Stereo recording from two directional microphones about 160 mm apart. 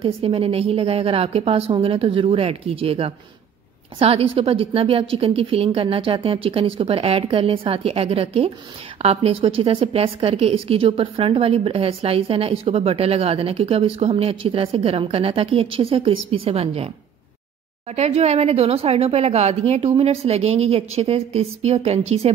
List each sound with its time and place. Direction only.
0.0 s a woman's voice: 35° right (ahead or behind)
17.9 s a woman's voice: 40° right (ahead or behind)